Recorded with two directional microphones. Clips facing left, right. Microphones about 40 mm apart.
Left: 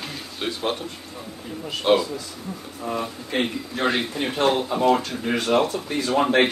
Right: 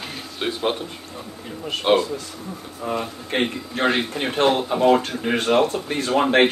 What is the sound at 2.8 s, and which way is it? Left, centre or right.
Speech, centre.